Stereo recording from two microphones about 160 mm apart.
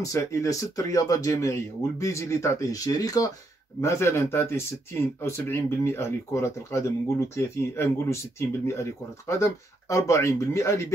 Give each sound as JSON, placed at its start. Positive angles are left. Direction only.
{"t": 0.0, "sound": "speech", "side_deg": 20}